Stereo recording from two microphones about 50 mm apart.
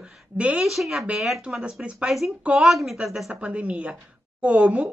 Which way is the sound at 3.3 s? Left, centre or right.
Right.